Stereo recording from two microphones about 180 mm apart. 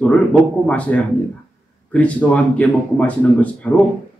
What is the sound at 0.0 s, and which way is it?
Speech, 5° left (ahead or behind).